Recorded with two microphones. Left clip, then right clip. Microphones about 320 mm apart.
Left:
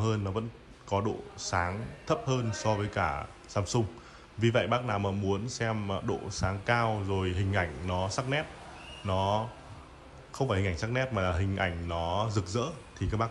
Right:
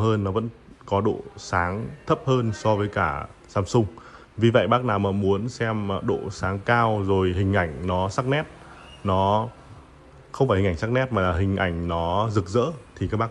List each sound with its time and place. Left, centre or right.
0.0 s speech: centre